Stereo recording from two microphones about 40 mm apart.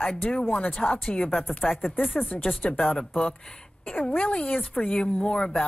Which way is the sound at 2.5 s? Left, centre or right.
Left.